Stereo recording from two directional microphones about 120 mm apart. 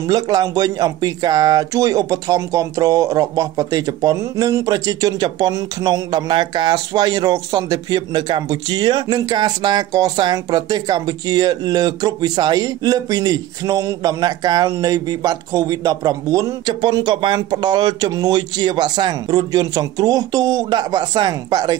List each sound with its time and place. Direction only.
0.0 s speech: 30° right (ahead or behind)